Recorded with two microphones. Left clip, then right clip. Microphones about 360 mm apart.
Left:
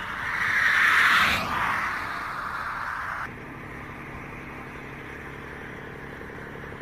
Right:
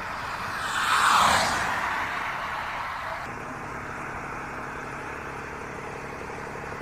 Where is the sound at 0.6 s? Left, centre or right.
Centre.